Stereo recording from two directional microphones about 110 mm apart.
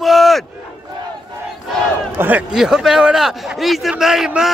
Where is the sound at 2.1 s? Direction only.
15° right (ahead or behind).